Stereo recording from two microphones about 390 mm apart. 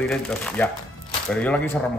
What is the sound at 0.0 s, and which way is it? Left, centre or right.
A man's voice, centre.